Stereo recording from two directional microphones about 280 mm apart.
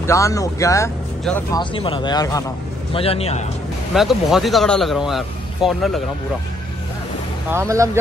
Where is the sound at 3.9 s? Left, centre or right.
Centre.